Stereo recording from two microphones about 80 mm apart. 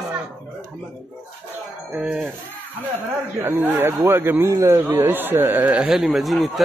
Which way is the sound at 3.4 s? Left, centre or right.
Right.